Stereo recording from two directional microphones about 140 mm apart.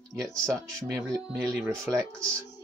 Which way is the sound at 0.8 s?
5° left (ahead or behind).